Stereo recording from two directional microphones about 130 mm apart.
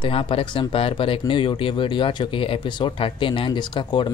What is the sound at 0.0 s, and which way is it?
Speech, 45° left (ahead or behind).